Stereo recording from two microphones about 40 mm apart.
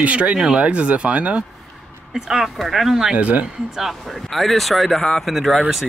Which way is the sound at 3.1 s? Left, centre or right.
Right.